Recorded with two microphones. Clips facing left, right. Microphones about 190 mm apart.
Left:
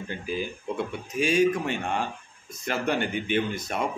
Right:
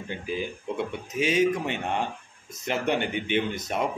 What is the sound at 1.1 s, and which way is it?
A man's voice, 20° right (ahead or behind).